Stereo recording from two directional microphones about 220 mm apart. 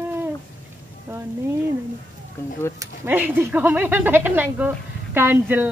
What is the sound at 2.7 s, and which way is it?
Speech, 10° right (ahead or behind).